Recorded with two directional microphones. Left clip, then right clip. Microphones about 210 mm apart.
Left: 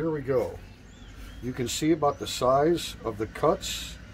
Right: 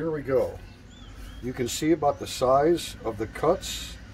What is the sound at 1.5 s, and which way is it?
Speech, 30° left (ahead or behind).